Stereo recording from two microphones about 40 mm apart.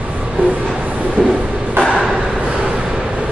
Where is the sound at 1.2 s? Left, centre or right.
Right.